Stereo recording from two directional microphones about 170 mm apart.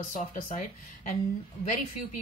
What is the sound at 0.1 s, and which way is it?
Speech, 50° left (ahead or behind).